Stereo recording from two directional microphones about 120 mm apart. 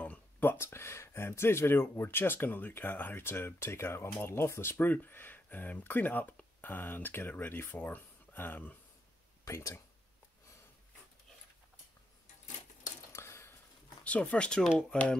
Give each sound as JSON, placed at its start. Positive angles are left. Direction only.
{"t": 0.0, "sound": "speech", "side_deg": 15}
{"t": 9.4, "sound": "speech", "side_deg": 25}
{"t": 13.1, "sound": "a sound", "side_deg": 20}
{"t": 14.0, "sound": "speech", "side_deg": 10}